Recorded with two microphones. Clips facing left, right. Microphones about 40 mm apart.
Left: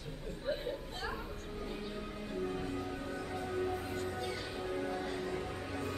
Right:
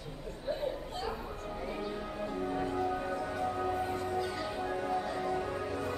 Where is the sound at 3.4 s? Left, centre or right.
Right.